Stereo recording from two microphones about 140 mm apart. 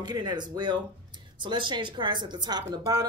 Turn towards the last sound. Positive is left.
turn(degrees=-30)  # may be behind; listen again after turning